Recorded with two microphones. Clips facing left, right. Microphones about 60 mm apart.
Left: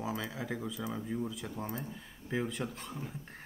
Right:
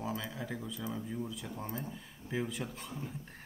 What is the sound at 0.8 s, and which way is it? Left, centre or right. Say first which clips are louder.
Speech: left 1 dB; centre.